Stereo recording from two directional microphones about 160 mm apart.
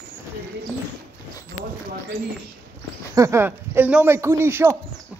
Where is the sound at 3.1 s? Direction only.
15° right (ahead or behind).